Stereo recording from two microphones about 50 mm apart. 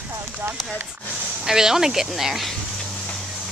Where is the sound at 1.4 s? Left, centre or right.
Centre.